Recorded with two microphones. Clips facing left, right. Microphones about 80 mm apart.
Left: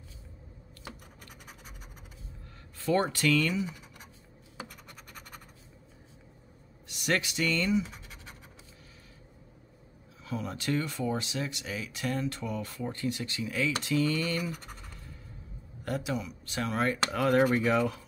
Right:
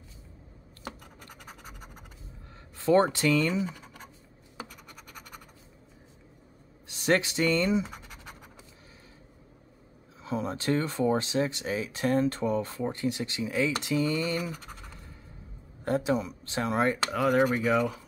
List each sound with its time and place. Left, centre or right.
1.2 s scratch: right
2.8 s speech: right
6.9 s speech: right
10.2 s speech: right
15.8 s speech: right
17.1 s speech: centre
17.4 s speech: centre
17.6 s speech: centre